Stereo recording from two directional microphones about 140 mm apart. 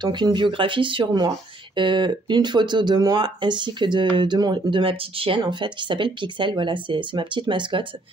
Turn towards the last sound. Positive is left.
turn(degrees=-35)  # may be behind; listen again after turning